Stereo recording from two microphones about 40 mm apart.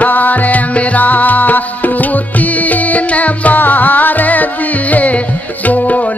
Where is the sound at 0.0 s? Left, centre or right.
Left.